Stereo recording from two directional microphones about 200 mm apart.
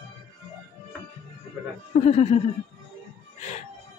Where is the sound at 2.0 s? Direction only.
35° left (ahead or behind).